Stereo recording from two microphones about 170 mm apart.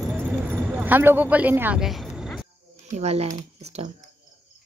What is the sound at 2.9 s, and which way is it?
Speech, 40° right (ahead or behind).